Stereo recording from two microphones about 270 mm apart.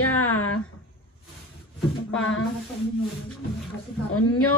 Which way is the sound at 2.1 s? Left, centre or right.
Left.